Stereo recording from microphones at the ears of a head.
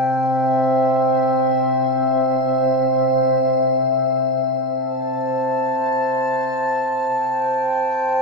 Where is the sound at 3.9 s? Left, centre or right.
Left.